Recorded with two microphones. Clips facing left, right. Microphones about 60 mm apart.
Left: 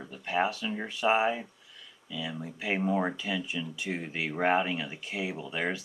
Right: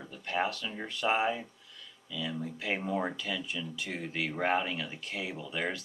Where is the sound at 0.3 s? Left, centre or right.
Centre.